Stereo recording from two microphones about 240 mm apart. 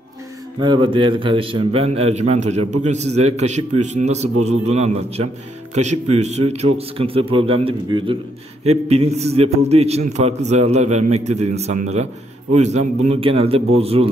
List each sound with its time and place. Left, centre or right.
0.6 s a man's voice: centre